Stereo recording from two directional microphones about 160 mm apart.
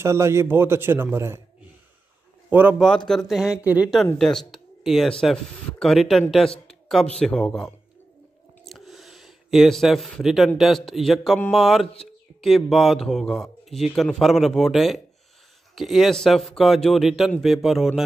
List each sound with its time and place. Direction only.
0.0 s a man's voice: 15° right (ahead or behind)
3.1 s a man's voice: centre (ahead or behind)
4.2 s a man's voice: 5° left (ahead or behind)
8.6 s a sound: centre (ahead or behind)
10.6 s a man's voice: centre (ahead or behind)